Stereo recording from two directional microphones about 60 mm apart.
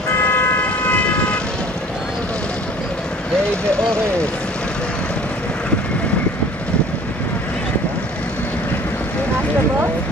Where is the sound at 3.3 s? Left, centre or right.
Centre.